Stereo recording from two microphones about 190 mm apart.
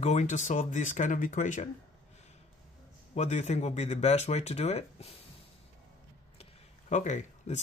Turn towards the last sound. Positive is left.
turn(degrees=40)  # may be behind; listen again after turning